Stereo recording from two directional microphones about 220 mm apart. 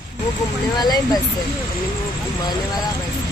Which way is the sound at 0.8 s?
20° left (ahead or behind).